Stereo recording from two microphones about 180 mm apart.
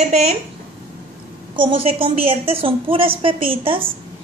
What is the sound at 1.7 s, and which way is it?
A woman's voice, 30° right (ahead or behind).